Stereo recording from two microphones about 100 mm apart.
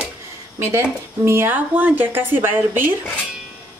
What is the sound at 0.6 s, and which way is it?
Speech, 30° right (ahead or behind).